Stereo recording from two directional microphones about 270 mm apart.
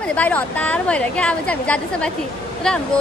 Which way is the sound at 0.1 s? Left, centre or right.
Centre.